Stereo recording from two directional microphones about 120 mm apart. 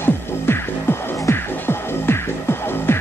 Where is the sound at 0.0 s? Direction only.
20° left (ahead or behind).